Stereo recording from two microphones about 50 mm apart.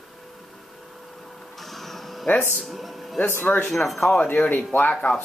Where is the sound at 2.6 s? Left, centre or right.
Centre.